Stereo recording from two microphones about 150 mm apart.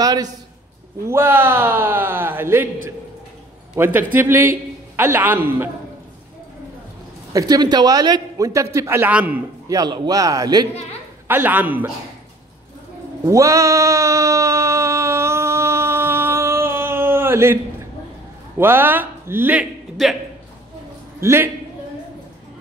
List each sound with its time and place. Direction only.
0.0 s a man's voice: 25° right (ahead or behind)
3.7 s speech: 15° right (ahead or behind)
7.3 s a man's voice: 25° right (ahead or behind)
9.7 s a man's voice: 25° right (ahead or behind)
11.2 s speech: 15° right (ahead or behind)
13.2 s a sound: 20° right (ahead or behind)
18.6 s speech: 15° right (ahead or behind)
21.2 s a man's voice: 20° right (ahead or behind)